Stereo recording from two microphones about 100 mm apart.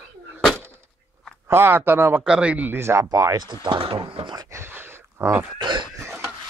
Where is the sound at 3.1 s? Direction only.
35° right (ahead or behind).